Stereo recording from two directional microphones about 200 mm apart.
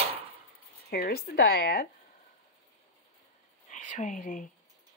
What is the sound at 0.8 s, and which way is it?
Speech, 50° left (ahead or behind).